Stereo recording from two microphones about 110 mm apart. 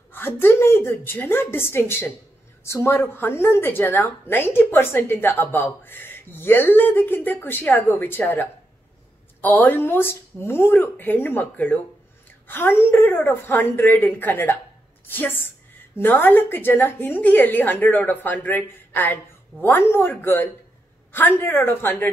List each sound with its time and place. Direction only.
0.1 s a woman's voice: 20° left (ahead or behind)